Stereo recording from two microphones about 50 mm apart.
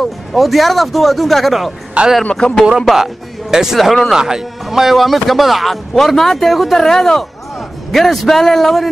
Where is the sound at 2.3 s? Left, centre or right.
Centre.